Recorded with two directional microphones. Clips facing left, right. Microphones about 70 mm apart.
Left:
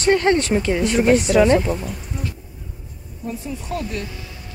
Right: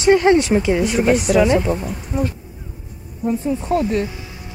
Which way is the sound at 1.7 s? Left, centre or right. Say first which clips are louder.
Right 3 dB; centre.